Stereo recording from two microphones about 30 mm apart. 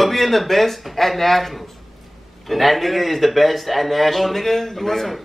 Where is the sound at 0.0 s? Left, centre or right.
Centre.